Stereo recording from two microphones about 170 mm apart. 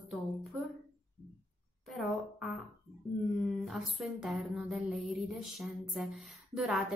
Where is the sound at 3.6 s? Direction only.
Centre (ahead or behind).